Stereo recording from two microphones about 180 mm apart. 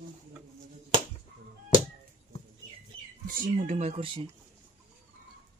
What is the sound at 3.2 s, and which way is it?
Speech, 50° right (ahead or behind).